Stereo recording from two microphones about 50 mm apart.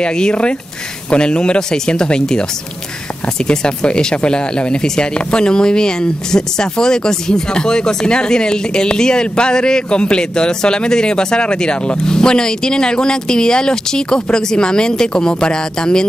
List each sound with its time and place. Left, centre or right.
0.0 s speech: centre